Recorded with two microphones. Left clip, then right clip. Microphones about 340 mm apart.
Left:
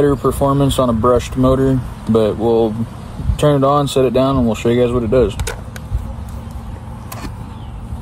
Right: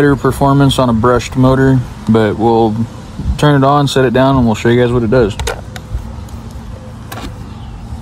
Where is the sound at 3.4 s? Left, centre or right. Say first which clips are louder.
Right 3 dB; right.